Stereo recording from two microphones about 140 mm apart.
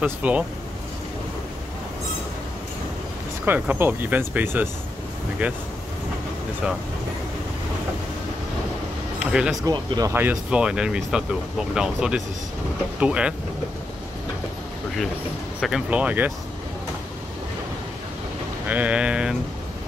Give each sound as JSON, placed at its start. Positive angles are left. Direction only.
{"t": 0.0, "sound": "speech", "side_deg": -10}
{"t": 3.4, "sound": "speech", "side_deg": -15}
{"t": 9.2, "sound": "speech", "side_deg": -5}
{"t": 9.7, "sound": "speech", "side_deg": -25}
{"t": 10.1, "sound": "speech", "side_deg": -10}
{"t": 15.6, "sound": "speech", "side_deg": -5}
{"t": 18.7, "sound": "speech", "side_deg": -10}